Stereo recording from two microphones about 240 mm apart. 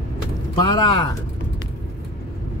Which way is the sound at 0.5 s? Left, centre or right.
Centre.